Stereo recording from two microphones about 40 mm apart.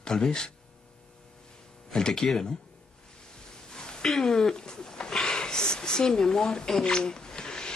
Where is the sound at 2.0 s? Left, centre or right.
Centre.